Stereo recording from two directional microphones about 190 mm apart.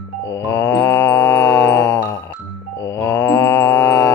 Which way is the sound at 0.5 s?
15° left (ahead or behind).